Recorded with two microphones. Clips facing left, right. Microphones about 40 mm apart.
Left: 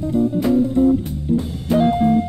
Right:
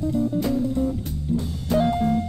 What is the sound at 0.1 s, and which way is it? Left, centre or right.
Music, centre.